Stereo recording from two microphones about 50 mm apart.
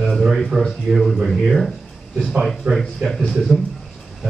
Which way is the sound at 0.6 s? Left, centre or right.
Centre.